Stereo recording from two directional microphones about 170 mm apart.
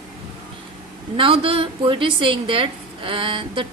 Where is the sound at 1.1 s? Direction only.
30° right (ahead or behind).